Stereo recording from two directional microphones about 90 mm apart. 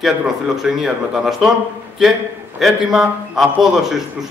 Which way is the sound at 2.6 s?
5° right (ahead or behind).